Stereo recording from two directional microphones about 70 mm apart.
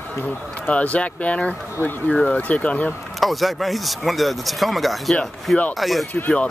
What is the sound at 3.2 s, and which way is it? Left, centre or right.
Speech, centre.